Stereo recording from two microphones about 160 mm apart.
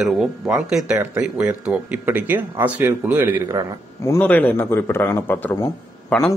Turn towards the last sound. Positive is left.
turn(degrees=5)  # may be behind; listen again after turning